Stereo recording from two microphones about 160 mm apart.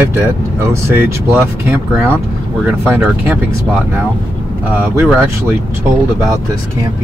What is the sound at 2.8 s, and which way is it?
Speech, 5° right (ahead or behind).